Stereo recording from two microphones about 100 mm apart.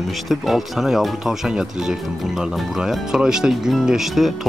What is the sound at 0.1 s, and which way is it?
Speech, centre (ahead or behind).